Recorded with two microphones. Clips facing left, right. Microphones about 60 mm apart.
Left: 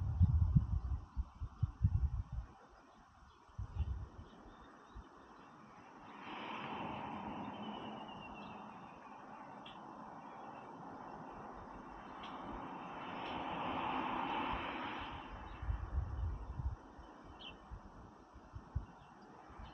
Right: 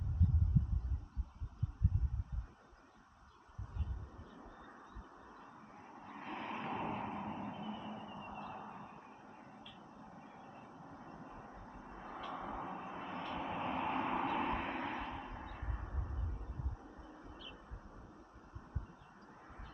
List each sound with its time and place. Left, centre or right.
5.9 s a sound: right
8.4 s vehicle: right
10.4 s train: centre
12.3 s vehicle: right
12.9 s vehicle: centre
15.5 s a sound: right